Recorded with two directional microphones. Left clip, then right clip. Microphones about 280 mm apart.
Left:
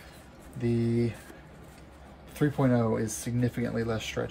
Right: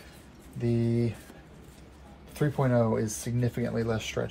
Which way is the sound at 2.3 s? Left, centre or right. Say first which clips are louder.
Even; centre.